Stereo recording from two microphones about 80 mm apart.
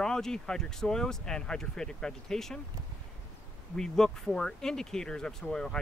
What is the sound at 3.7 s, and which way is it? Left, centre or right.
Speech, centre.